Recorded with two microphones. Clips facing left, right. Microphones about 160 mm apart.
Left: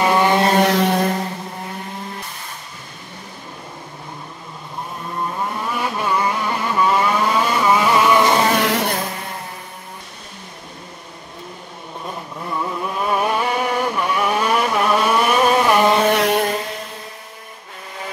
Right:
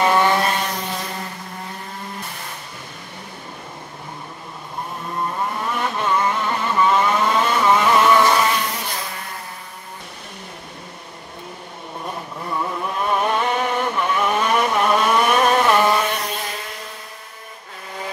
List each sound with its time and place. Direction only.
0.0 s vehicle: 10° left (ahead or behind)
0.6 s vehicle: 80° left; by 1.1 s 65° left (ahead or behind)
5.3 s vehicle: centre (ahead or behind)
8.2 s a sound: 25° left (ahead or behind)
8.5 s music: 75° left (ahead or behind)
12.4 s vehicle: centre (ahead or behind)
16.1 s a sound: 70° left (ahead or behind)